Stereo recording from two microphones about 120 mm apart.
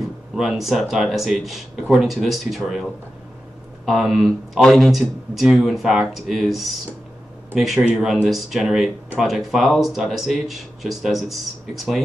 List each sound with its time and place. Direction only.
0.4 s speech: centre (ahead or behind)